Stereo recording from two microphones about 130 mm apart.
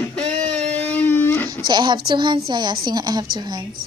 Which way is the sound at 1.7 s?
35° right (ahead or behind).